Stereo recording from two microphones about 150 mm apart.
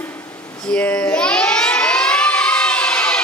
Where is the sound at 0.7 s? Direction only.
5° left (ahead or behind).